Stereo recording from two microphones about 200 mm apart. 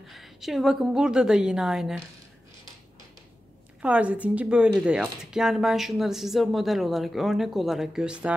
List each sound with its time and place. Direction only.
0.0 s speech: centre (ahead or behind)
3.8 s a woman's voice: 5° right (ahead or behind)